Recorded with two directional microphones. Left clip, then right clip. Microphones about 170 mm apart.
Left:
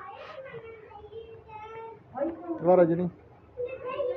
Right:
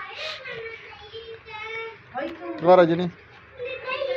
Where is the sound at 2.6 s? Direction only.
25° right (ahead or behind).